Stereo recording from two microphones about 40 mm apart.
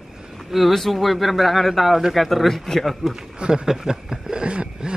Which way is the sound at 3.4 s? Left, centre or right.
Right.